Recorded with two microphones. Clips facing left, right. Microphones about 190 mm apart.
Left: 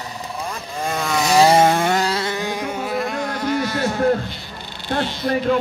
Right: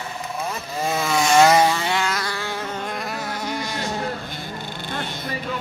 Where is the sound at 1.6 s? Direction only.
50° left (ahead or behind).